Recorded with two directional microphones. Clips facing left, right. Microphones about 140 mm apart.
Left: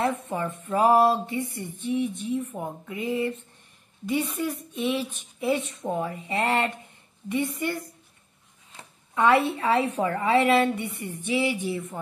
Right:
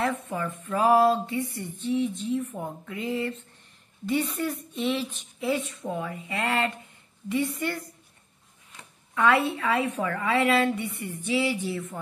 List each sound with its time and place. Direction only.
0.0 s a woman's voice: 25° left (ahead or behind)